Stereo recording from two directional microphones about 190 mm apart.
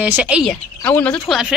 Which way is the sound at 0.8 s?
10° left (ahead or behind).